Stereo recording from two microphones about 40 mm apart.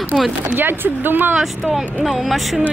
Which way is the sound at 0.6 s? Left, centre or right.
Right.